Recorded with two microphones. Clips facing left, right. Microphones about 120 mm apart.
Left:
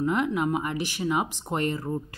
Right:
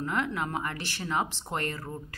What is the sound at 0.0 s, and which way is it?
A woman's voice, 20° left (ahead or behind).